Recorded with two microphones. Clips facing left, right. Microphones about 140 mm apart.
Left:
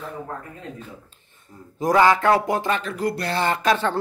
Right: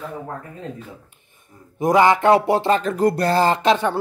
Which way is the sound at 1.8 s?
20° right (ahead or behind).